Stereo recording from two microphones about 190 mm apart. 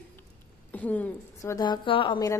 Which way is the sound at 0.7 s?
10° left (ahead or behind).